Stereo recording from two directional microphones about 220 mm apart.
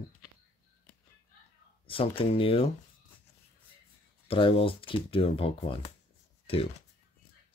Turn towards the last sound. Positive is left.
turn(degrees=25)  # may be behind; listen again after turning